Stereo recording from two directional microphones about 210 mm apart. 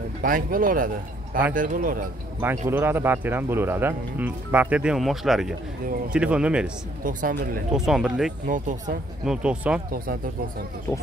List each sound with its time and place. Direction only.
0.2 s speech: 40° right (ahead or behind)
2.4 s speech: 10° right (ahead or behind)
7.0 s speech: 40° right (ahead or behind)
7.7 s speech: centre (ahead or behind)
8.5 s speech: 35° right (ahead or behind)
9.2 s speech: 5° right (ahead or behind)